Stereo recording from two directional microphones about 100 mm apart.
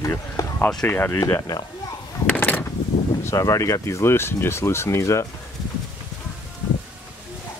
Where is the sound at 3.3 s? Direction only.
35° left (ahead or behind).